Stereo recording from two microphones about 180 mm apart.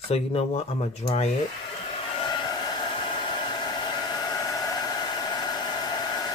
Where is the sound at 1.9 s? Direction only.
25° left (ahead or behind).